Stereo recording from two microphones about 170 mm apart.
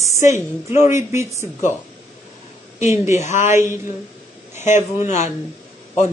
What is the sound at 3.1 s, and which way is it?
Speech, 45° left (ahead or behind).